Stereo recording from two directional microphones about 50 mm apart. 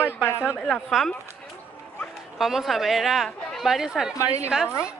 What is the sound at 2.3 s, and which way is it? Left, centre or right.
A woman's voice, centre.